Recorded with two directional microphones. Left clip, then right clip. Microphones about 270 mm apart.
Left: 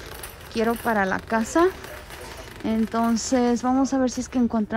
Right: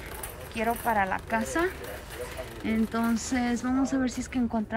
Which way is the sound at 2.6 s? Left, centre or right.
Centre.